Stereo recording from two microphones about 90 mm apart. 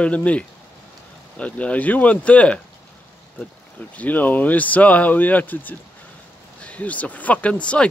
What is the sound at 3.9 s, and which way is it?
Speech, 20° left (ahead or behind).